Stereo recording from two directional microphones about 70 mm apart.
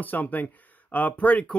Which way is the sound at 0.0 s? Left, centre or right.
Left.